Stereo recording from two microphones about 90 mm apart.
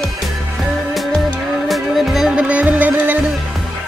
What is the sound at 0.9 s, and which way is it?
Music, centre (ahead or behind).